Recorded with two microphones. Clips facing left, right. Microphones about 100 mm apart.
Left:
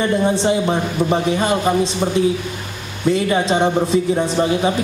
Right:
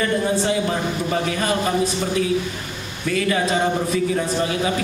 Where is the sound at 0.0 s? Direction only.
25° left (ahead or behind).